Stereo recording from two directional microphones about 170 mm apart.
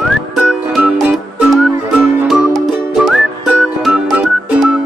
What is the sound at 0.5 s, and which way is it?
Music, centre (ahead or behind).